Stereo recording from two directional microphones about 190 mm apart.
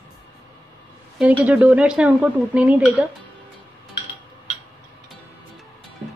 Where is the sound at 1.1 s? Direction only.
5° right (ahead or behind).